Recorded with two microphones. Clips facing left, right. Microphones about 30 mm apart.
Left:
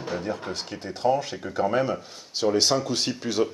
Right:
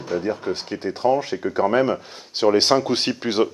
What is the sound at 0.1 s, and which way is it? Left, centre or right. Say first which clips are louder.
Speech: right 9 dB; centre.